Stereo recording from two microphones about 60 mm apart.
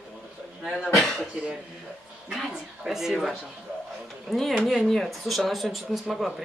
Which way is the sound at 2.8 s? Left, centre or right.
Centre.